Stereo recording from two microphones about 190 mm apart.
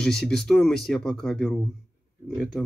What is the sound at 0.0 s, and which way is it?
Speech, centre (ahead or behind).